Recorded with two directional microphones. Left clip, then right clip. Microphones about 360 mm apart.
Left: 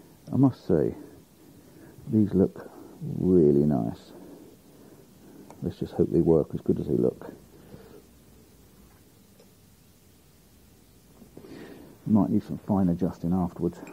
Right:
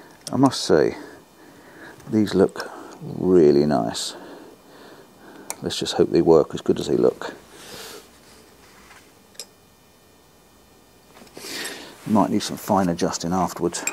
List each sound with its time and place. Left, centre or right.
0.2 s speech: centre
4.0 s a sound: centre
6.2 s speech: centre
11.3 s speech: centre